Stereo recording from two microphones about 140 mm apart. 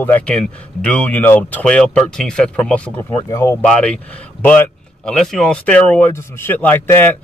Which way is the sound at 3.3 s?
20° left (ahead or behind).